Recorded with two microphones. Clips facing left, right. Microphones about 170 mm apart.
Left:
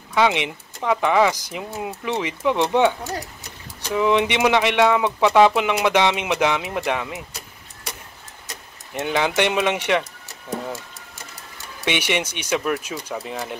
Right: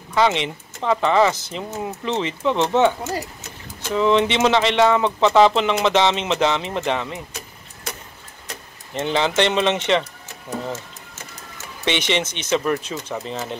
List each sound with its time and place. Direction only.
0.1 s speech: 10° left (ahead or behind)
9.0 s speech: 10° left (ahead or behind)
11.8 s speech: 10° left (ahead or behind)